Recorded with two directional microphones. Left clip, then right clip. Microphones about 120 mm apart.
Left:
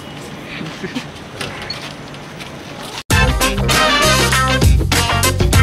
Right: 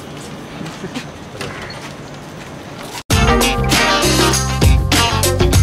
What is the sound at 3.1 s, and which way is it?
Music, centre (ahead or behind).